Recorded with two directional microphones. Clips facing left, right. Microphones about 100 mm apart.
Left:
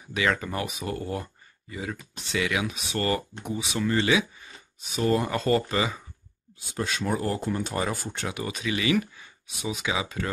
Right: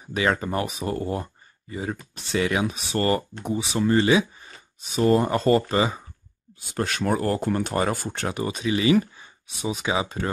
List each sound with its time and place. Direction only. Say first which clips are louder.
0.1 s speech: right 3 dB; 35° right (ahead or behind)
6.7 s speech: right 4 dB; 60° right (ahead or behind)
8.3 s speech: right 5 dB; 35° right (ahead or behind)